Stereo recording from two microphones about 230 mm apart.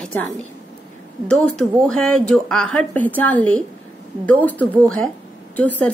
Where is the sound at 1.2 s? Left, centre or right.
Centre.